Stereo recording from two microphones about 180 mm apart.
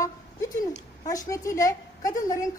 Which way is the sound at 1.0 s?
20° left (ahead or behind).